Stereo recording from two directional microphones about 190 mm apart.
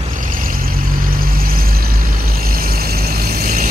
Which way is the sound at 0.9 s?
50° right (ahead or behind).